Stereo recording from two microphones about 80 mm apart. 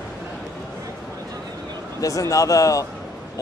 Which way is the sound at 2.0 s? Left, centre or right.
Left.